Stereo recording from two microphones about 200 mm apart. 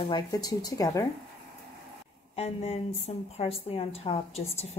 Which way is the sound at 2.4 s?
30° left (ahead or behind).